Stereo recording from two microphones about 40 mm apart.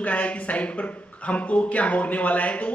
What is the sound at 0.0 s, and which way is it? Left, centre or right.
A man's voice, left.